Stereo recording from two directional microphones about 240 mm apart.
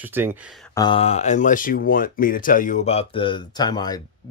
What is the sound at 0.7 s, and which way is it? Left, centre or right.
Speech, left.